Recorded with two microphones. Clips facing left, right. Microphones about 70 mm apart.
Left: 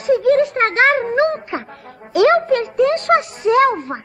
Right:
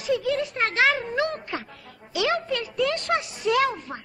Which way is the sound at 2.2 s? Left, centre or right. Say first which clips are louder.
Left 12 dB; left.